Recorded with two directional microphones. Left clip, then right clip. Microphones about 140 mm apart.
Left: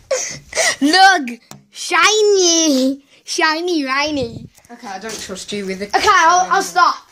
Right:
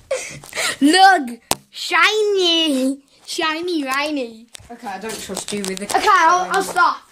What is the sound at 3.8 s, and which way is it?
Speech, 40° left (ahead or behind).